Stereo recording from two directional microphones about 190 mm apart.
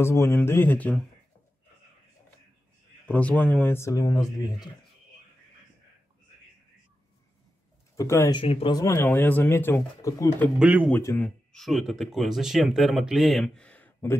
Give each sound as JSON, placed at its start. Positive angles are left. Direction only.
{"t": 0.0, "sound": "speech", "side_deg": 15}
{"t": 3.1, "sound": "speech", "side_deg": 10}
{"t": 7.9, "sound": "speech", "side_deg": 15}
{"t": 8.4, "sound": "speech", "side_deg": 30}
{"t": 8.7, "sound": "speech", "side_deg": 15}
{"t": 10.6, "sound": "speech", "side_deg": -10}
{"t": 10.9, "sound": "speech", "side_deg": 10}
{"t": 11.2, "sound": "speech", "side_deg": 0}